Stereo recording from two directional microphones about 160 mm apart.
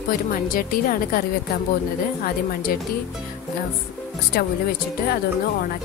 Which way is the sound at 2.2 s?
65° left (ahead or behind).